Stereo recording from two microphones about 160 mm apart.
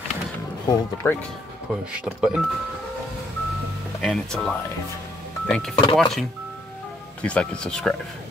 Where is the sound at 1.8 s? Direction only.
5° right (ahead or behind).